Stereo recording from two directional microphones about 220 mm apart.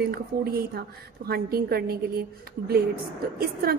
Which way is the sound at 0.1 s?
45° right (ahead or behind).